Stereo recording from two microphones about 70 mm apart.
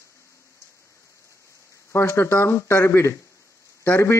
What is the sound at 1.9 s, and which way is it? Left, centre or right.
Speech, left.